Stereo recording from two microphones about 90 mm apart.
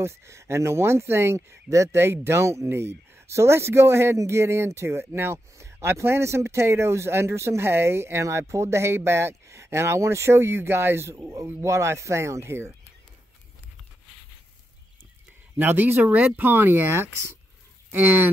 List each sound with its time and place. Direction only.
0.0 s speech: 30° right (ahead or behind)
15.5 s speech: 20° right (ahead or behind)